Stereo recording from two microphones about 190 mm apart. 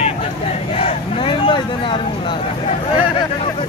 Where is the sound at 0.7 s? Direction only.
30° left (ahead or behind).